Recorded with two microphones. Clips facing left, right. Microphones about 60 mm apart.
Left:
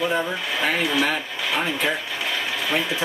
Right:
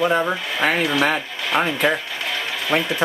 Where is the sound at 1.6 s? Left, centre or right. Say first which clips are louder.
Right 5 dB; centre.